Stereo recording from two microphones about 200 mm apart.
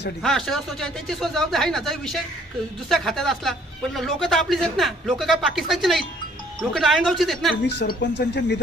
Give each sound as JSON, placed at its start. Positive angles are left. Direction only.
{"t": 0.2, "sound": "speech", "side_deg": 0}
{"t": 7.6, "sound": "speech", "side_deg": 55}